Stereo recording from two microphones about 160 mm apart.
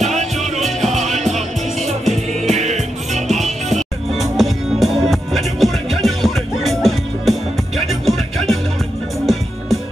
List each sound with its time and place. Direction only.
0.0 s music: 45° right (ahead or behind)
2.4 s music: 45° right (ahead or behind)
4.2 s music: centre (ahead or behind)